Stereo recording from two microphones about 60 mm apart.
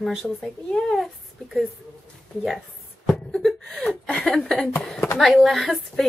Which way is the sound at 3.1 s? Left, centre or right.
Centre.